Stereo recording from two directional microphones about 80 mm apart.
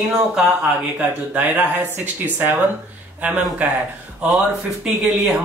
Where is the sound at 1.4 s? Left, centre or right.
Right.